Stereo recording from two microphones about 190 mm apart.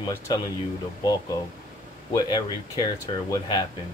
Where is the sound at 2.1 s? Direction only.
20° left (ahead or behind).